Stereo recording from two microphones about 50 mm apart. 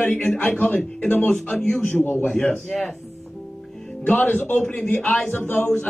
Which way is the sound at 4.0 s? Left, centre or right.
Left.